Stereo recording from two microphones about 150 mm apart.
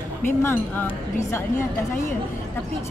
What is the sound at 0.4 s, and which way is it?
A woman's voice, 15° left (ahead or behind).